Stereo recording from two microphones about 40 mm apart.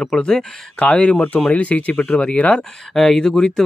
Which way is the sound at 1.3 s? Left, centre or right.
Left.